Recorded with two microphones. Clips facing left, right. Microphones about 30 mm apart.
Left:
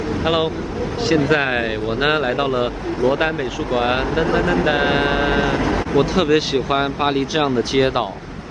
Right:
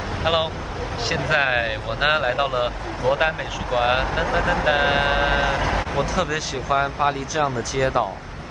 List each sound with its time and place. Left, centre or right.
0.2 s speech: centre
5.9 s speech: left